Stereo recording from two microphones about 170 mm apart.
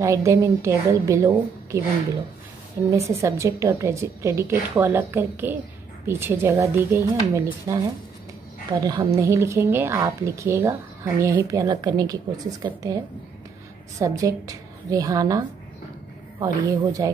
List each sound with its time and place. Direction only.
0.0 s a woman's voice: 15° right (ahead or behind)
2.9 s a woman's voice: 15° right (ahead or behind)
16.6 s a woman's voice: 20° right (ahead or behind)